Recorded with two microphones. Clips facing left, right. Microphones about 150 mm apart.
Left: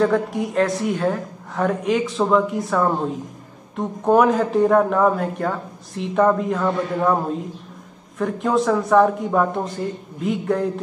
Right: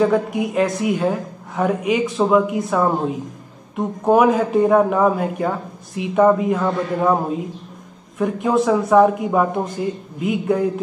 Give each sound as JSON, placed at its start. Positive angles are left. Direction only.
{"t": 0.0, "sound": "a man's voice", "side_deg": -5}